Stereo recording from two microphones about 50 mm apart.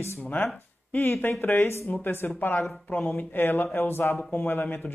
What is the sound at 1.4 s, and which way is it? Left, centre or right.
Speech, left.